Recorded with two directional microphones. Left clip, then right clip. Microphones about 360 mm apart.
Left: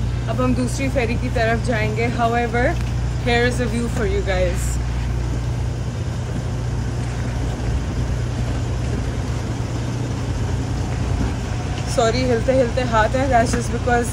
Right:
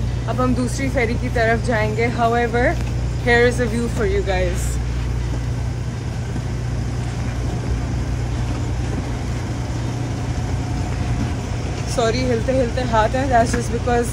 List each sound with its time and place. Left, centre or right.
0.4 s speech: centre
11.9 s speech: centre